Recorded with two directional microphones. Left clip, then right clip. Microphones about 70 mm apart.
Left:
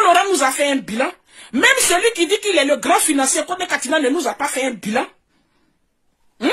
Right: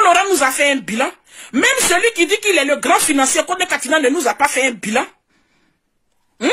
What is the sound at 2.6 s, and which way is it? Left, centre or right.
A woman's voice, centre.